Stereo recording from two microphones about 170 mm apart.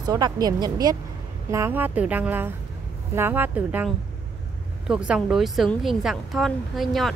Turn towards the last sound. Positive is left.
turn(degrees=0)  # may be behind; listen again after turning